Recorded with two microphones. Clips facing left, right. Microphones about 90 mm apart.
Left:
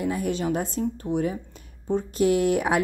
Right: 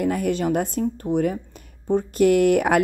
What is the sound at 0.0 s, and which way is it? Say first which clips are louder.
A woman's voice: right 4 dB; 60° right (ahead or behind).